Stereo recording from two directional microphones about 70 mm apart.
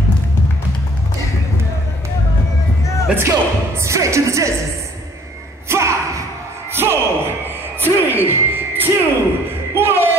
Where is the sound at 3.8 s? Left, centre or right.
Right.